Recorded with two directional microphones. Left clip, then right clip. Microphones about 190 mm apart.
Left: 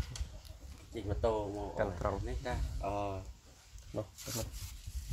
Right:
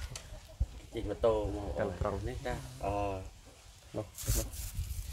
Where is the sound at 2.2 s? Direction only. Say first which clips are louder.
Right 2 dB; 5° left (ahead or behind).